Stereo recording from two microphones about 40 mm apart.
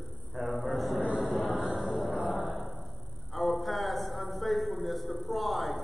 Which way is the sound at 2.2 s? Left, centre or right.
Centre.